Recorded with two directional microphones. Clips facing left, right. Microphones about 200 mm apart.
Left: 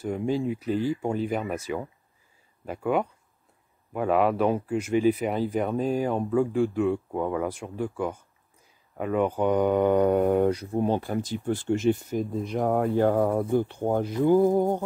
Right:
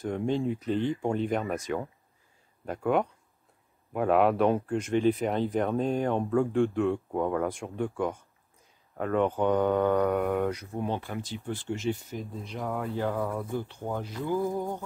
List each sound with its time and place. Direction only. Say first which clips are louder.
0.0 s speech: left 2 dB; 5° left (ahead or behind); by 14.8 s 55° left (ahead or behind)